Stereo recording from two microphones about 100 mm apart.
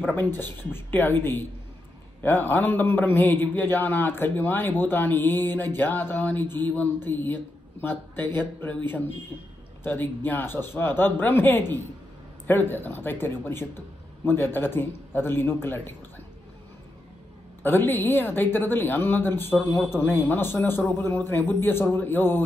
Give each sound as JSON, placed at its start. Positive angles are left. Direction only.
{"t": 0.0, "sound": "a man's voice", "side_deg": 20}
{"t": 9.8, "sound": "a man's voice", "side_deg": 20}
{"t": 17.6, "sound": "a man's voice", "side_deg": 20}